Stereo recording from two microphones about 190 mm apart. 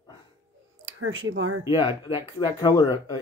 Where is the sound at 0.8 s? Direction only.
90° right.